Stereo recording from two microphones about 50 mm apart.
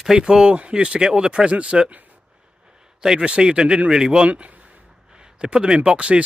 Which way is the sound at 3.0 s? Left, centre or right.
Centre.